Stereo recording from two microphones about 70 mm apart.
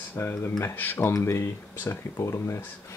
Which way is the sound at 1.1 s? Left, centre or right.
Left.